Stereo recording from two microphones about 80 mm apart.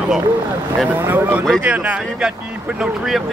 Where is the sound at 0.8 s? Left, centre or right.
Right.